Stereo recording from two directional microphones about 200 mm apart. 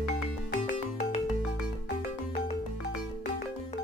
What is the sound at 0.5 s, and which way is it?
Music, 45° left (ahead or behind).